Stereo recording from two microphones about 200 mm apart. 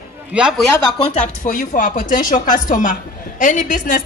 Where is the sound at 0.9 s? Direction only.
30° left (ahead or behind).